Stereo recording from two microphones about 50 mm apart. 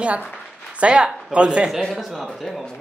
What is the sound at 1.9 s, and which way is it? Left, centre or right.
Speech, centre.